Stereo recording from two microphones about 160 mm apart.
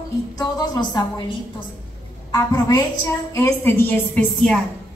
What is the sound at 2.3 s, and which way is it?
A woman's voice, 25° left (ahead or behind).